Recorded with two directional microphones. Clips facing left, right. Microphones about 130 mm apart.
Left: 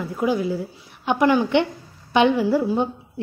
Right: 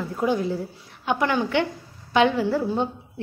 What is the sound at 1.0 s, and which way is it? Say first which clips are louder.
A woman's voice: left 5 dB; 15° left (ahead or behind).